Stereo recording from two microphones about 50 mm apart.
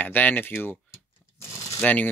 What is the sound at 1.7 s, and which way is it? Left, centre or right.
Speech, left.